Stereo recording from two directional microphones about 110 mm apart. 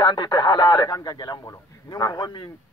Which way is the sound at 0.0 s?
45° left (ahead or behind).